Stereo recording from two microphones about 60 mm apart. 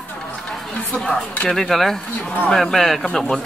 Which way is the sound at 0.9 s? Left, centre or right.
Centre.